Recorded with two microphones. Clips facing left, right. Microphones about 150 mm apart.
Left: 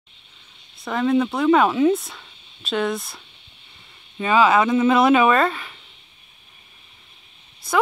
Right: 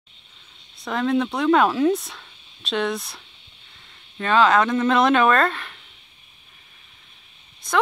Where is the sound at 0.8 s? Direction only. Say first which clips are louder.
Left 2 dB; centre (ahead or behind).